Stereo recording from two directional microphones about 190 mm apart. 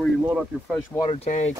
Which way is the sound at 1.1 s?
35° left (ahead or behind).